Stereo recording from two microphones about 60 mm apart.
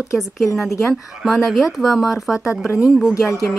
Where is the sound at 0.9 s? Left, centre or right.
Centre.